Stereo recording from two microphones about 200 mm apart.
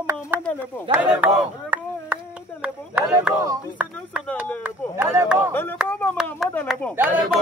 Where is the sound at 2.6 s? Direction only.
5° right (ahead or behind).